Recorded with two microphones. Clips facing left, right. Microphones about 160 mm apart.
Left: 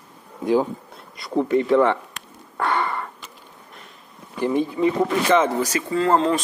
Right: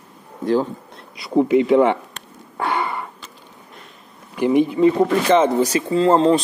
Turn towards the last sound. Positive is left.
turn(degrees=-30)  # may be behind; listen again after turning